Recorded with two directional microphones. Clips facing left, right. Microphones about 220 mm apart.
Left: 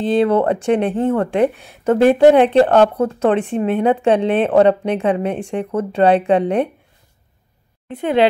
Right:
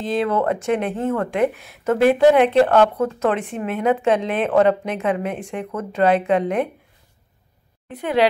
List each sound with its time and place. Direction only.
0.0 s speech: 30° left (ahead or behind)
7.9 s speech: 25° left (ahead or behind)